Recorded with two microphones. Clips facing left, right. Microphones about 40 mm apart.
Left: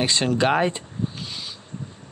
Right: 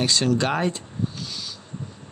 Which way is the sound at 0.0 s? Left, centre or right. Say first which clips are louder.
Left 1 dB; left.